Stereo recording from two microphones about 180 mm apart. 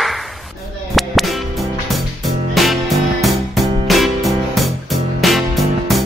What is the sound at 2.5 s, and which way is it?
Music, centre (ahead or behind).